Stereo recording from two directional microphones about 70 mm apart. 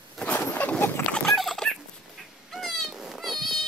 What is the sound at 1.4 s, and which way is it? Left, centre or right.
Fowl, centre.